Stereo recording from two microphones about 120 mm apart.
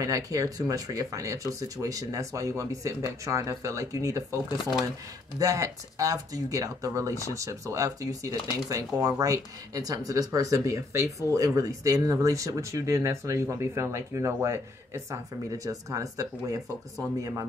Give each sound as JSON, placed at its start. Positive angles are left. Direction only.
{"t": 0.0, "sound": "speech", "side_deg": -30}
{"t": 5.4, "sound": "speech", "side_deg": -30}